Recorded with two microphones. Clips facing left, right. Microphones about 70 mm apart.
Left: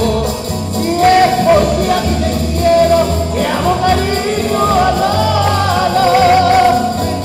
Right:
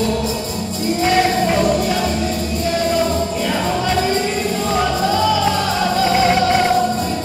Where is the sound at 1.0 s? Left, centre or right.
Left.